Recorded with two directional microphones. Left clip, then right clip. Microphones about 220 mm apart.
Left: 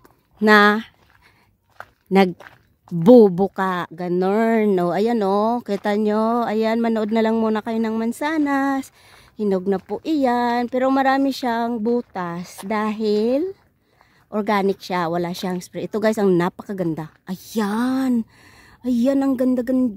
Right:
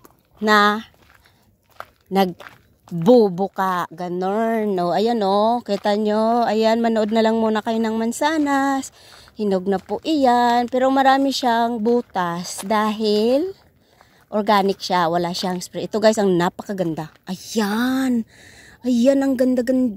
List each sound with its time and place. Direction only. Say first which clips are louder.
0.4 s speech: left 2 dB; 25° left (ahead or behind)
2.5 s speech: right 3 dB; 50° right (ahead or behind)
3.0 s speech: left 3 dB; 25° left (ahead or behind); by 19.9 s 5° left (ahead or behind)